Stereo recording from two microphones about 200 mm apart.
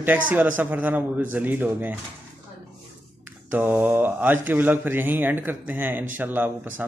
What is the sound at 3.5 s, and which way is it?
Speech, 10° right (ahead or behind).